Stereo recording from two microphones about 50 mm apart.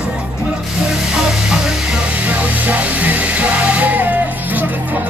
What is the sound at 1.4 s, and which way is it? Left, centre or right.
Music, centre.